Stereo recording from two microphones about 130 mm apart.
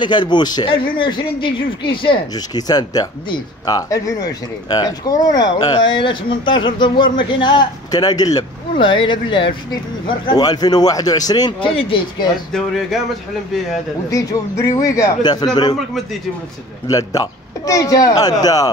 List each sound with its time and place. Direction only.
0.0 s speech: 35° left (ahead or behind)
11.7 s speech: 45° left (ahead or behind)
12.5 s speech: 5° left (ahead or behind)
14.1 s speech: 30° left (ahead or behind)
16.8 s speech: 30° left (ahead or behind)